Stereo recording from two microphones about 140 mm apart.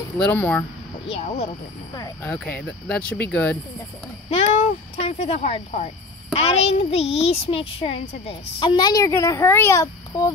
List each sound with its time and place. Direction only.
0.2 s speech: 10° left (ahead or behind)
1.0 s speech: 45° left (ahead or behind)
2.2 s speech: 10° left (ahead or behind)
4.3 s a woman's voice: 45° left (ahead or behind); by 10.3 s 20° left (ahead or behind)